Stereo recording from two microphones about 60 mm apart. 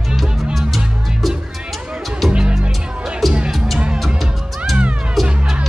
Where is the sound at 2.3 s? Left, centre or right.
Centre.